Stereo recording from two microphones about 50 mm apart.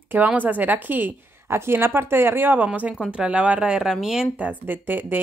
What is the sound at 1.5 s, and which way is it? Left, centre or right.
Speech, right.